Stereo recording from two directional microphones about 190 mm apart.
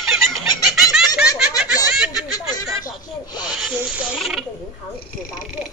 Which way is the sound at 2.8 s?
20° left (ahead or behind).